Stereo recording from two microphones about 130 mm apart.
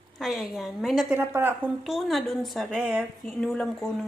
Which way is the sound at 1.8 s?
Centre (ahead or behind).